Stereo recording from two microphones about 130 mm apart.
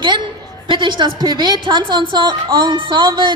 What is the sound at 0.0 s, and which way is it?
A woman's voice, 35° right (ahead or behind).